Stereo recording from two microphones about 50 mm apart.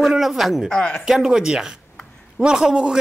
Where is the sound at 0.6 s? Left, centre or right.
Centre.